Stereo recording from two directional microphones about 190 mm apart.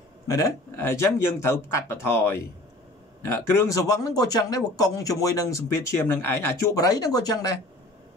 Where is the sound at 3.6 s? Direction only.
20° left (ahead or behind).